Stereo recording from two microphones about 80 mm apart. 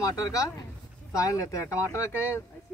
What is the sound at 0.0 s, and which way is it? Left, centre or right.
Speech, left.